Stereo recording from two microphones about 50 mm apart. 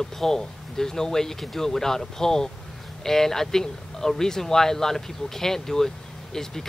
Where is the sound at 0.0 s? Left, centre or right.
Centre.